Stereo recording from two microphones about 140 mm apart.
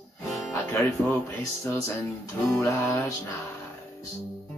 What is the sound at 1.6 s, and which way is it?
Music, 20° left (ahead or behind).